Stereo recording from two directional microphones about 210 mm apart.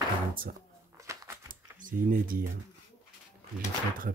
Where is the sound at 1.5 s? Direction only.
40° right (ahead or behind).